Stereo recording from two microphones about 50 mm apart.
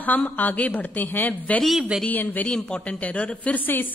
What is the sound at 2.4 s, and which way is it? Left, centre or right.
A woman's voice, centre.